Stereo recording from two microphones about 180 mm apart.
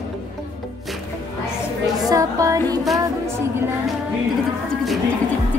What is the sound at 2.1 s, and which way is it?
Music, 20° right (ahead or behind).